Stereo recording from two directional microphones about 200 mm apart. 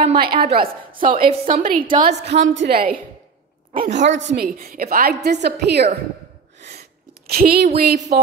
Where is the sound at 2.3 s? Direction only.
65° right (ahead or behind); by 3.0 s 50° right (ahead or behind).